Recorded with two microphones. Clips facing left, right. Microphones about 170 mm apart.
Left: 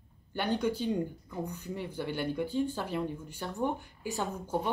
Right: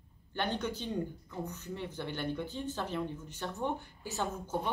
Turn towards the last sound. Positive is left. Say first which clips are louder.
# left 2 dB
turn(degrees=15)  # may be behind; listen again after turning